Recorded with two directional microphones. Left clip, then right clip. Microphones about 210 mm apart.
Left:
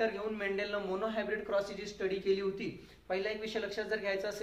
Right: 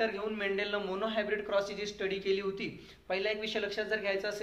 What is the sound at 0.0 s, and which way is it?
A man's voice, 5° right (ahead or behind).